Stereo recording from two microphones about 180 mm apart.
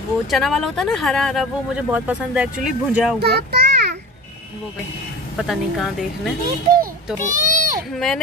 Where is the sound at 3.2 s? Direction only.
65° right (ahead or behind).